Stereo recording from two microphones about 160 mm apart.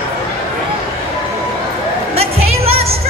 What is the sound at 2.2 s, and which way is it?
Music, 40° right (ahead or behind).